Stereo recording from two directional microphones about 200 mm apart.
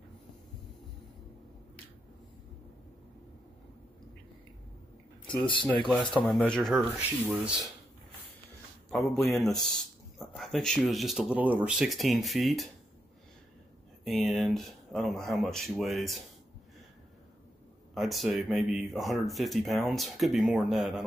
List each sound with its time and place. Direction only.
5.4 s speech: 25° left (ahead or behind)
5.7 s speech: 5° left (ahead or behind)
9.4 s speech: centre (ahead or behind)
14.0 s speech: centre (ahead or behind)
17.9 s speech: centre (ahead or behind)